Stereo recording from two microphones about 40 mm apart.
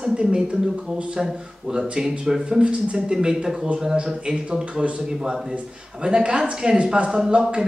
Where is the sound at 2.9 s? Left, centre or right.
Centre.